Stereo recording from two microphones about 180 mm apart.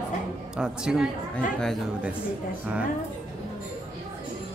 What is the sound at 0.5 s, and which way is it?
A woman's voice, 5° right (ahead or behind).